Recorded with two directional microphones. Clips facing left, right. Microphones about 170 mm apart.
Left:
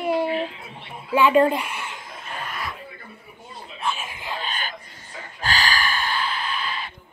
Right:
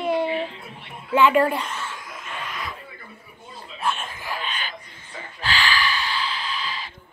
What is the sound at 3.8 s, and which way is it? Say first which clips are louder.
Chuckle: right 1 dB; centre (ahead or behind).